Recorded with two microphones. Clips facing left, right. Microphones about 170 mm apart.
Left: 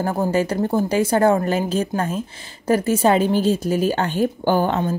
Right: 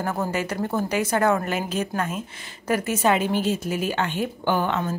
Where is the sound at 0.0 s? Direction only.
30° left (ahead or behind).